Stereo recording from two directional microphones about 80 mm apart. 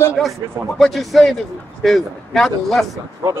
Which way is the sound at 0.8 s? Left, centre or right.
Centre.